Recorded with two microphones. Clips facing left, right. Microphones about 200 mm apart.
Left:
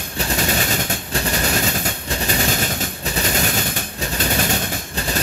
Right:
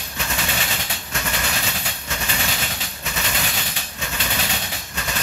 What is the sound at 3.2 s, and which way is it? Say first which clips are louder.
Machine gun: left 7 dB; 45° left (ahead or behind).